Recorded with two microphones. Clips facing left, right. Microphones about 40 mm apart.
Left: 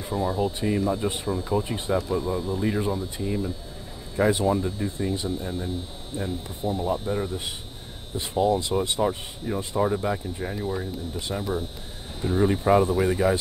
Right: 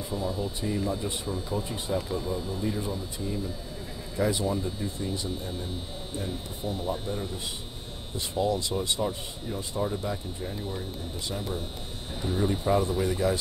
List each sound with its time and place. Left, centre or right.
0.1 s speech: left
2.6 s speech: left
4.2 s speech: left
8.4 s speech: left